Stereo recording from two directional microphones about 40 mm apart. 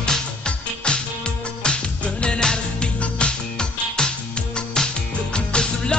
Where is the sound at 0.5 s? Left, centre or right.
Left.